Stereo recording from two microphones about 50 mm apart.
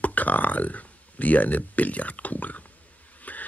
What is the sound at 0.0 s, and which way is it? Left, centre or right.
Speech, left.